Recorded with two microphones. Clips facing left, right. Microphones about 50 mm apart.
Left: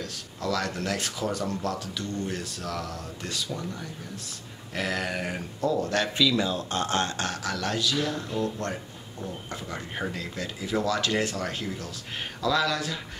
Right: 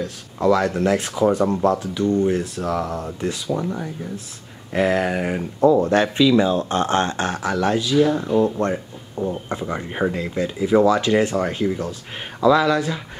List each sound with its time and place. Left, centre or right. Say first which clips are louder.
0.0 s speech: right 12 dB; right